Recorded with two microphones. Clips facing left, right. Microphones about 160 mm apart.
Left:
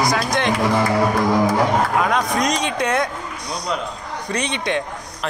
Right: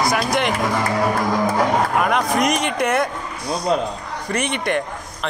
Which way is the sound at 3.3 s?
30° right (ahead or behind).